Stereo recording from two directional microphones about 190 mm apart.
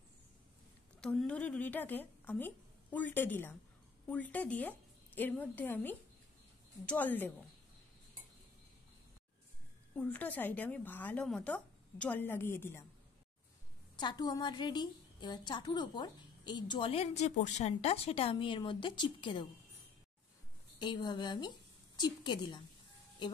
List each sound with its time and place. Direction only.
1.0 s a woman's voice: 5° left (ahead or behind)
9.9 s a woman's voice: 5° left (ahead or behind)
13.9 s a woman's voice: 20° left (ahead or behind)
20.8 s a woman's voice: 25° left (ahead or behind)